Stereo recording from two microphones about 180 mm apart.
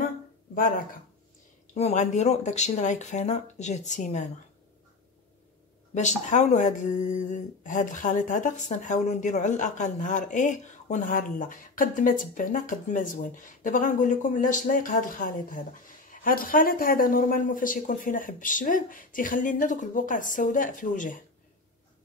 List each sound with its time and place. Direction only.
0.6 s speech: 50° left (ahead or behind)
1.7 s speech: 40° left (ahead or behind)
5.9 s speech: 40° left (ahead or behind)